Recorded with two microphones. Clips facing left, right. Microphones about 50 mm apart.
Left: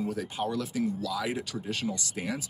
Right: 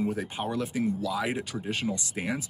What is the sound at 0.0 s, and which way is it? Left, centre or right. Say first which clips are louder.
Speech: right 1 dB; right.